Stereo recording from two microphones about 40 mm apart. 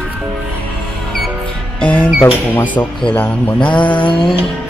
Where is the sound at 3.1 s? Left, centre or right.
Left.